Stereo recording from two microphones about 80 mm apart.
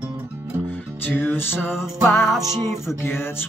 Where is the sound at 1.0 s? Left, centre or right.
Left.